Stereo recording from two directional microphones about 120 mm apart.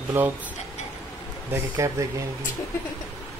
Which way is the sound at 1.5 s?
25° right (ahead or behind).